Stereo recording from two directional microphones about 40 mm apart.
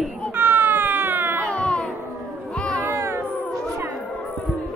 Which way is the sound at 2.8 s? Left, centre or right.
Right.